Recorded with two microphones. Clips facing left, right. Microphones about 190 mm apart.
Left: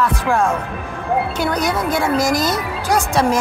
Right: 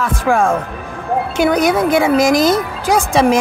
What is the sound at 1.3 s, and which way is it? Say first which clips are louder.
Speech: right 6 dB; 90° right.